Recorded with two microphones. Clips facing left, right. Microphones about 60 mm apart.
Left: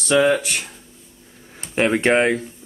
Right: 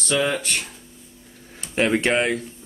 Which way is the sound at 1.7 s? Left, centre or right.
Centre.